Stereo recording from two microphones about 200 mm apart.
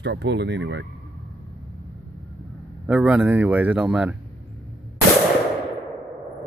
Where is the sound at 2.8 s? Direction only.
5° right (ahead or behind).